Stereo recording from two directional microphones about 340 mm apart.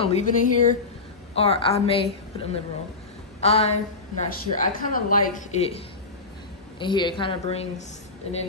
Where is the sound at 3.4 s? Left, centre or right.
Centre.